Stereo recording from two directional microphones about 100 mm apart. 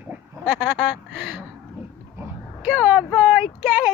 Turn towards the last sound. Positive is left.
turn(degrees=-15)  # may be behind; listen again after turning